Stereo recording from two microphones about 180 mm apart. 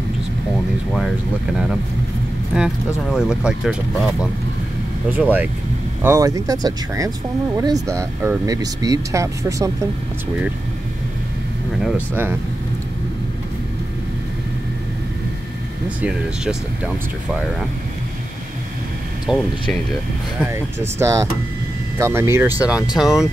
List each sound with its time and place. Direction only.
2.5 s speech: 5° right (ahead or behind)
5.1 s speech: 10° right (ahead or behind)
16.0 s speech: 5° right (ahead or behind)
19.2 s speech: centre (ahead or behind)
20.3 s speech: 15° right (ahead or behind)